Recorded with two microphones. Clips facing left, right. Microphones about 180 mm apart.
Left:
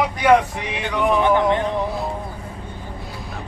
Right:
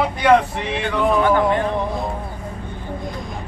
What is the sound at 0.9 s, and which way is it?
Speech, 25° left (ahead or behind).